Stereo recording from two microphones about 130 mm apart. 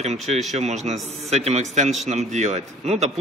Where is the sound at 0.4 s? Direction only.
60° right (ahead or behind).